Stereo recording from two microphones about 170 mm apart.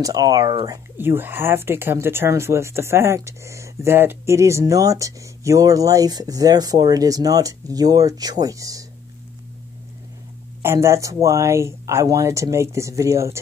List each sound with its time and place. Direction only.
0.0 s speech: 20° right (ahead or behind)
10.6 s speech: 15° right (ahead or behind)